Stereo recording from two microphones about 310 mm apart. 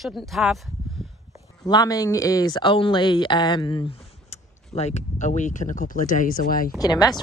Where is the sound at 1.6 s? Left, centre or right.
Centre; by 6.7 s left.